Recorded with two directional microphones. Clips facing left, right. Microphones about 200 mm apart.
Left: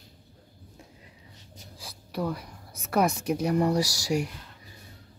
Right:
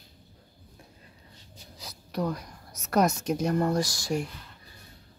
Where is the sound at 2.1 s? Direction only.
5° left (ahead or behind).